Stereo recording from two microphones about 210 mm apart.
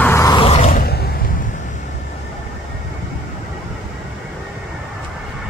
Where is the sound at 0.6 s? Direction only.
45° left (ahead or behind).